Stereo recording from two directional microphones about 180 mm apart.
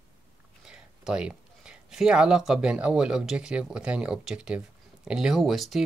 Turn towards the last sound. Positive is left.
turn(degrees=0)  # may be behind; listen again after turning